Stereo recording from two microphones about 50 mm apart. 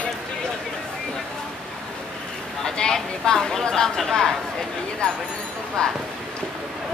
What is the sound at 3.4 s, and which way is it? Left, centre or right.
Speech, centre.